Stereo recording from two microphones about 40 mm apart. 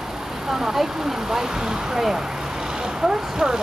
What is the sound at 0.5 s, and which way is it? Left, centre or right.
Speech, centre.